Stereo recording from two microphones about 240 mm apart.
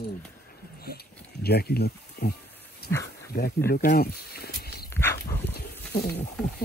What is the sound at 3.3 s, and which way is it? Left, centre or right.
Speech, left.